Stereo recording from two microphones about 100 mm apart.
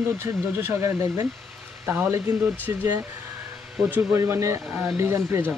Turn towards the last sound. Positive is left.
turn(degrees=-30)  # may be behind; listen again after turning